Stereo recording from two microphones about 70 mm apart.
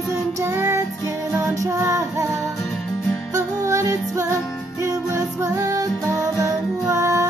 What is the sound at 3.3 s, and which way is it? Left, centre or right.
Music, right.